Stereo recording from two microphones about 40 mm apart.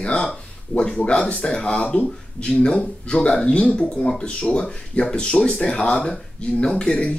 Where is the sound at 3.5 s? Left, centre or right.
Left.